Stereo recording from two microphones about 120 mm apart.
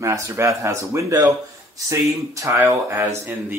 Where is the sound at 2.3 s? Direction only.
25° right (ahead or behind).